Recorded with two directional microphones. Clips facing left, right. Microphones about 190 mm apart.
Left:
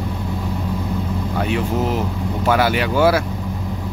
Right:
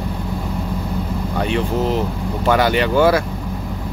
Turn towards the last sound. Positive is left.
turn(degrees=5)  # may be behind; listen again after turning